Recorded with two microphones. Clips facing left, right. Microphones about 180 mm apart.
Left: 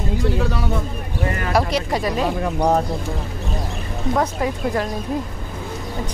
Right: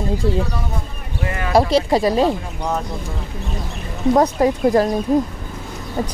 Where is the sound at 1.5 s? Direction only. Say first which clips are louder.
Right 7 dB; 30° right (ahead or behind).